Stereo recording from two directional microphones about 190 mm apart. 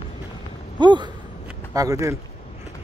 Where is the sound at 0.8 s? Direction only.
25° right (ahead or behind).